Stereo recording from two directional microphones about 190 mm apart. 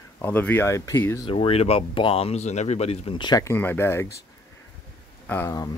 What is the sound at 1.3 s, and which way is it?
Speech, 30° left (ahead or behind).